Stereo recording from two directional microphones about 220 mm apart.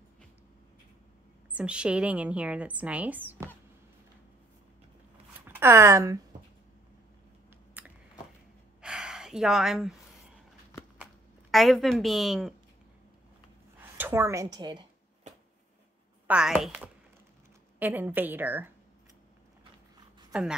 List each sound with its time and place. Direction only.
1.5 s a woman's voice: 5° right (ahead or behind)
5.5 s speech: 10° right (ahead or behind)
7.8 s a sound: 5° right (ahead or behind)
8.8 s gasp: 5° right (ahead or behind)
11.5 s a woman's voice: centre (ahead or behind)
13.7 s a woman's voice: 10° right (ahead or behind)
16.3 s a woman's voice: 5° right (ahead or behind)